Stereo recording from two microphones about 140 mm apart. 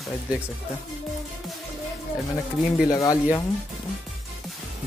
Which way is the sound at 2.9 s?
25° left (ahead or behind).